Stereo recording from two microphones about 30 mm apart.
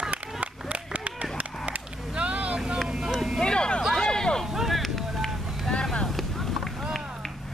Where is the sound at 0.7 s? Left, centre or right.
Right.